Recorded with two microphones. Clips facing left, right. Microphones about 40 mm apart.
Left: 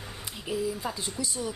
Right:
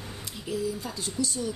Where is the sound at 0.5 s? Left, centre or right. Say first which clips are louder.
Left 1 dB; centre.